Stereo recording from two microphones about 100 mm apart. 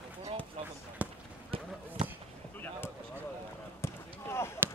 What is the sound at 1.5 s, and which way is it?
Basketball bounce, 65° right (ahead or behind).